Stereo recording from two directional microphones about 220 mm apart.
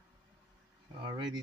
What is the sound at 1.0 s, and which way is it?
Speech, 20° right (ahead or behind).